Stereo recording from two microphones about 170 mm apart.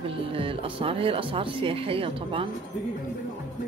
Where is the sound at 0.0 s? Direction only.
35° right (ahead or behind).